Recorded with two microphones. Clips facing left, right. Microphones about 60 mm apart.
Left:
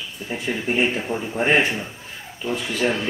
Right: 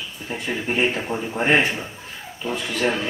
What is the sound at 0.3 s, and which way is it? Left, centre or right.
Speech, centre.